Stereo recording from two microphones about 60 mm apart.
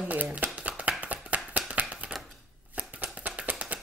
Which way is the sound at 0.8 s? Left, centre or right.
Right.